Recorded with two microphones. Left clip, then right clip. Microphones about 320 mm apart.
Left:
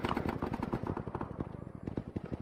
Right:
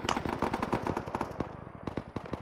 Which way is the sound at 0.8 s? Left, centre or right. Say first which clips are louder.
Right 6 dB; right.